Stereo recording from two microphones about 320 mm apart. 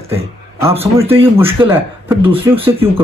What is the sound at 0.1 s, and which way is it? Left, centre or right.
A man's voice, centre.